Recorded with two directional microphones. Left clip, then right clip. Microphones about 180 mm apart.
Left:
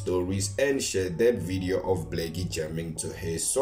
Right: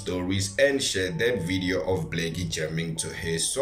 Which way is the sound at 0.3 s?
50° left (ahead or behind).